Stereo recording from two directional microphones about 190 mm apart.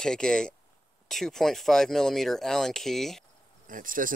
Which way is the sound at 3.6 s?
45° right (ahead or behind).